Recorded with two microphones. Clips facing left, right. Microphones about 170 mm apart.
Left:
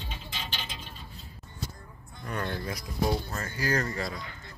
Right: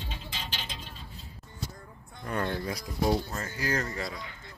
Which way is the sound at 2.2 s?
25° right (ahead or behind).